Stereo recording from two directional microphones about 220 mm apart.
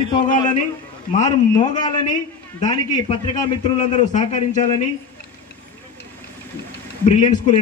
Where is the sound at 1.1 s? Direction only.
30° left (ahead or behind).